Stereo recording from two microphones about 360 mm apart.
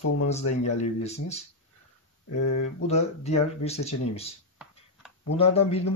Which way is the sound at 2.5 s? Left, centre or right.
Centre.